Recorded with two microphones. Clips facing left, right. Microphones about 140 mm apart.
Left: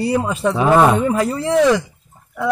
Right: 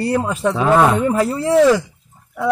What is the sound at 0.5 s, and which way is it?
Speech, 10° left (ahead or behind).